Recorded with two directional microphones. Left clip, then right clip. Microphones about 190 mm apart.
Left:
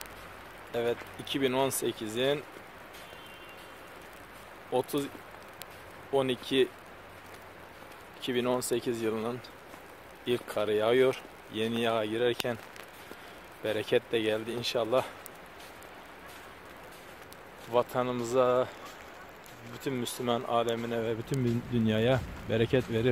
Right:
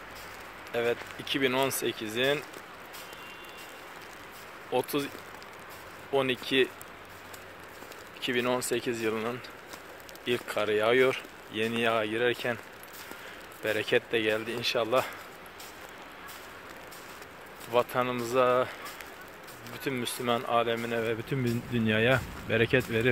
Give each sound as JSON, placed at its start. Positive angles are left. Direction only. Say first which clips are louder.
{"t": 0.7, "sound": "speech", "louder": "right 2 dB", "side_deg": 15}
{"t": 4.6, "sound": "speech", "louder": "right 1 dB", "side_deg": 20}
{"t": 6.4, "sound": "speech", "louder": "right 1 dB", "side_deg": 20}
{"t": 8.2, "sound": "speech", "louder": "right 1 dB", "side_deg": 20}
{"t": 13.7, "sound": "speech", "louder": "right 1 dB", "side_deg": 20}
{"t": 17.7, "sound": "speech", "louder": "right 1 dB", "side_deg": 20}
{"t": 19.8, "sound": "speech", "louder": "right 1 dB", "side_deg": 20}